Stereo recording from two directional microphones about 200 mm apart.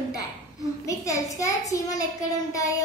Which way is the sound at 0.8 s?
15° left (ahead or behind).